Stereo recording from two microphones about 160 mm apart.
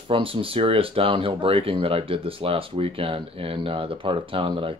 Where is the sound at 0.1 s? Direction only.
35° right (ahead or behind).